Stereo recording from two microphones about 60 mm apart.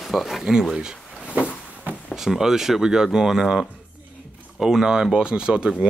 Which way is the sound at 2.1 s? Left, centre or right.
Centre.